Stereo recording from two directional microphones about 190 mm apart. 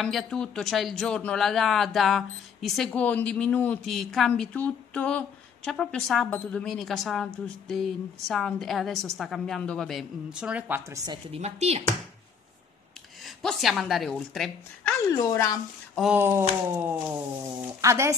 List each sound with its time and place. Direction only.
0.0 s speech: centre (ahead or behind)
11.3 s speech: 35° right (ahead or behind)
13.2 s speech: centre (ahead or behind)
15.0 s speech: 15° left (ahead or behind)
15.9 s speech: 5° right (ahead or behind)